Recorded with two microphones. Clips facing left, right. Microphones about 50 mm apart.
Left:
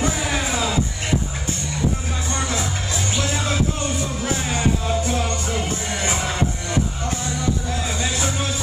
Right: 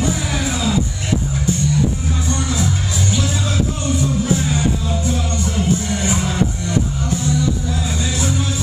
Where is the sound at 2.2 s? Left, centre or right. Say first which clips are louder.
Right 3 dB; left.